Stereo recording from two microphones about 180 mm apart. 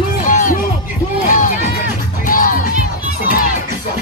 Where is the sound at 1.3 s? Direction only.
45° left (ahead or behind).